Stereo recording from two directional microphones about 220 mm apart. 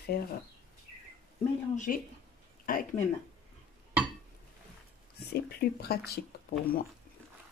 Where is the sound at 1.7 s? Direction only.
35° left (ahead or behind).